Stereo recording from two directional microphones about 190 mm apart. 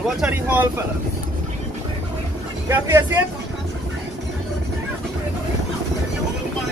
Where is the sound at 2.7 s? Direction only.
15° right (ahead or behind).